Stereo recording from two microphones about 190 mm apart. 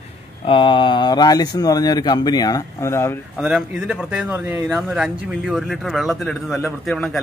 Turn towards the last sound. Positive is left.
turn(degrees=0)  # may be behind; listen again after turning